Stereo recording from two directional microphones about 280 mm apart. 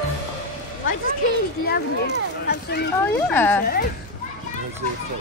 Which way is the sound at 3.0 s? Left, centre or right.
Centre.